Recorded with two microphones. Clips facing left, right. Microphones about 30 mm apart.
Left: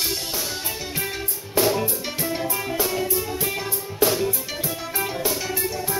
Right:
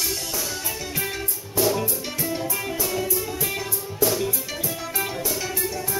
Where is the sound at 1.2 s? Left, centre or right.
Left.